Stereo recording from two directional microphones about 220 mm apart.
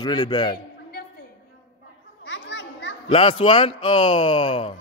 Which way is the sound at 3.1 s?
25° left (ahead or behind).